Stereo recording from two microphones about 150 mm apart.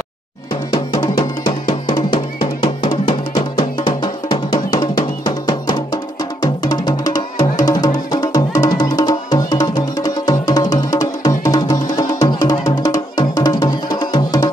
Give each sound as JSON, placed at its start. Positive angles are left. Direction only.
{"t": 0.7, "sound": "music", "side_deg": 30}
{"t": 3.1, "sound": "drum", "side_deg": 30}
{"t": 6.4, "sound": "music", "side_deg": 30}